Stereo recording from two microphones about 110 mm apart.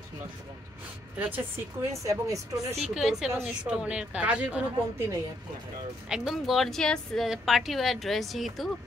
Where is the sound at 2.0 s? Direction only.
30° right (ahead or behind).